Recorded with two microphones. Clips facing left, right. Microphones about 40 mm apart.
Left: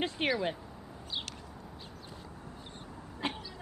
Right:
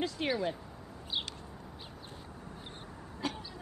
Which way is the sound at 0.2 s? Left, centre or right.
Left.